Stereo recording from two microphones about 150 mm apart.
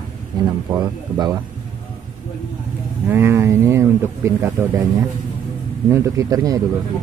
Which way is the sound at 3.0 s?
15° right (ahead or behind).